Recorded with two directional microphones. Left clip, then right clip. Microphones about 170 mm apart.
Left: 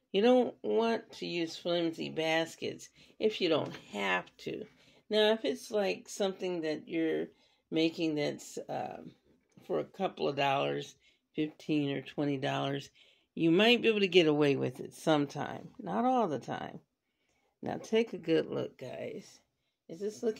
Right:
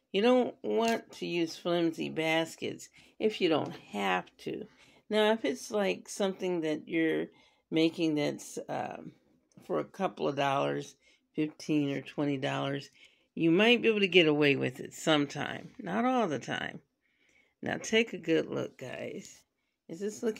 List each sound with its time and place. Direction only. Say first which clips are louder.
0.1 s speech: even; centre (ahead or behind)
5.6 s speech: right 1 dB; 20° right (ahead or behind); by 19.2 s centre (ahead or behind)
20.0 s speech: even; 20° right (ahead or behind)